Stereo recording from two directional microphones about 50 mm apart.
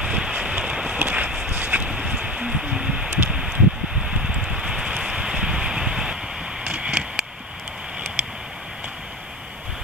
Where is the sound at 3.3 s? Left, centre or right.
Centre.